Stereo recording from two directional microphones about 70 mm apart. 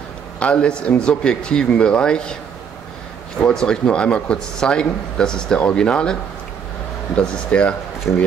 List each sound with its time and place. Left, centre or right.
0.4 s speech: centre
3.3 s speech: centre
7.2 s speech: centre